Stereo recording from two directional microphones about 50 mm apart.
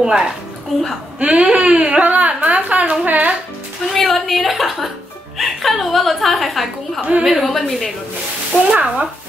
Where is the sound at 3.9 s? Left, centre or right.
Centre.